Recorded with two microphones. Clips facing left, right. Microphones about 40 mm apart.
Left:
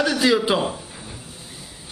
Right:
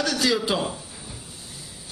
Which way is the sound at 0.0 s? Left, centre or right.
Centre.